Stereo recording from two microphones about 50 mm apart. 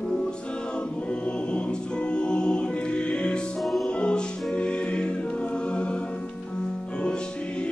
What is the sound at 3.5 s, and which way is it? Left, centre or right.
Music, centre.